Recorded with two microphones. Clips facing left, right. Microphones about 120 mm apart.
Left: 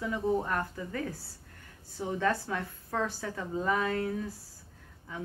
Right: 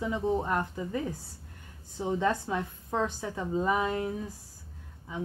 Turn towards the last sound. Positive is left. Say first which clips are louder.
# right 4 dB
turn(degrees=-15)  # may be behind; listen again after turning